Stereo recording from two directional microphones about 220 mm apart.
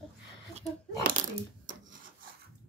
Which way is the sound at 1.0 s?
35° right (ahead or behind).